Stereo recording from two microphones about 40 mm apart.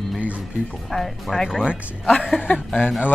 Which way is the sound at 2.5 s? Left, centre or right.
Left.